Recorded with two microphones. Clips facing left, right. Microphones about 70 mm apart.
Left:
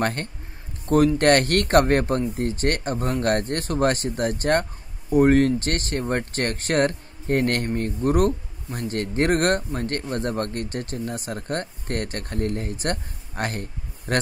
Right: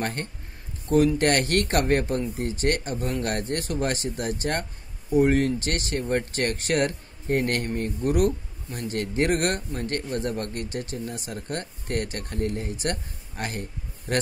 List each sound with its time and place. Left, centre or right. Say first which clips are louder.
0.0 s speech: left 5 dB; left